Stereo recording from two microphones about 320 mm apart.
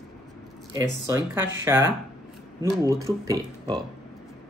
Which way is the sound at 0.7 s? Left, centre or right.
Centre.